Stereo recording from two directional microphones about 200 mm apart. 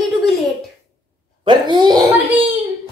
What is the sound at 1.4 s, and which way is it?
Speech, 20° right (ahead or behind).